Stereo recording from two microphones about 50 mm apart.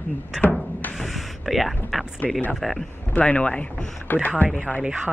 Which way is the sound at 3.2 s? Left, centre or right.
Left.